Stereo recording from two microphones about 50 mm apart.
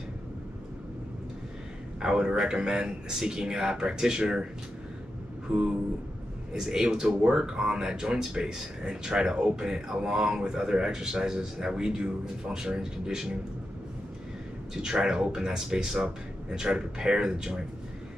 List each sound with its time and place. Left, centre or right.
2.0 s speech: centre
5.5 s a sound: right
6.5 s speech: centre
14.7 s speech: centre